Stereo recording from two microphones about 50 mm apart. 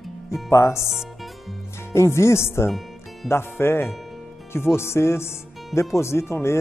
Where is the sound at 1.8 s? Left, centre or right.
Left.